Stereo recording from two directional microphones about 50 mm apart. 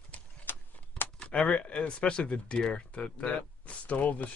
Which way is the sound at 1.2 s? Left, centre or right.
Left.